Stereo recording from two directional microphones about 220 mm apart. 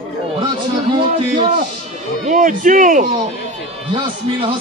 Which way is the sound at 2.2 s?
35° right (ahead or behind).